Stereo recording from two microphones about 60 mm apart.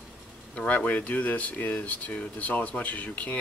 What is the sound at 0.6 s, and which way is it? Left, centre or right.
Speech, left.